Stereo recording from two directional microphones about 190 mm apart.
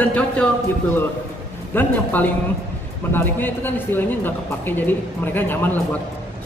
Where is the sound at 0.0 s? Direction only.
5° left (ahead or behind).